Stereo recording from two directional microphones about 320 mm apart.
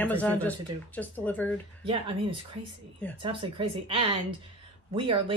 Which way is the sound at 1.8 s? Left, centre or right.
Centre.